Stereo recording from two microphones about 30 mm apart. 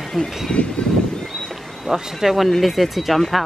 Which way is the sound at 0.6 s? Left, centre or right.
Left.